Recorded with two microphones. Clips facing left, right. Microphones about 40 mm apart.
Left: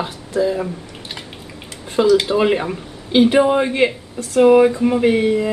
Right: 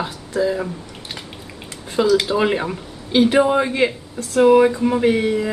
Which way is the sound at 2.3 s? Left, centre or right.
Centre.